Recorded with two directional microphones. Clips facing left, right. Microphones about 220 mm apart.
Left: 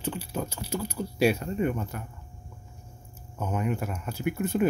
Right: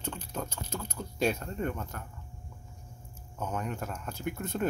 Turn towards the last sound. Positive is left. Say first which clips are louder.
# left 6 dB
turn(degrees=10)  # may be behind; listen again after turning